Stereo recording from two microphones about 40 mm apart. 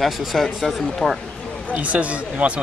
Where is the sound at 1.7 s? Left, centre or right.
Right.